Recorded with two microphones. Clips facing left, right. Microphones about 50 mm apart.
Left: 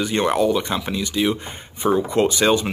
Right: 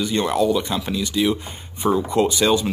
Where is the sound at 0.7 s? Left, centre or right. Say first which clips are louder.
Even; centre.